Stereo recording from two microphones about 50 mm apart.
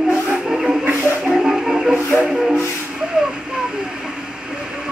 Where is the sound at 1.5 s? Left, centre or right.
Centre.